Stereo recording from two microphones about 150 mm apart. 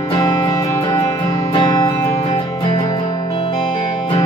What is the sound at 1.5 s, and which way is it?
Music, 30° left (ahead or behind).